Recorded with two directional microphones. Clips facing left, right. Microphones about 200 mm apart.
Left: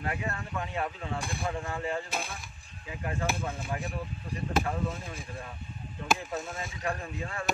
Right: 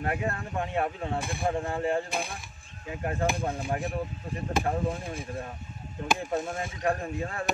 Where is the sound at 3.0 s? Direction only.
35° right (ahead or behind).